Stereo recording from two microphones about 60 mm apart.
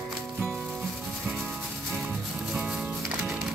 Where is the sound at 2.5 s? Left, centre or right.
Centre.